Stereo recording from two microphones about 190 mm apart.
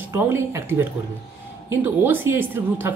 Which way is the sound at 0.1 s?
10° right (ahead or behind).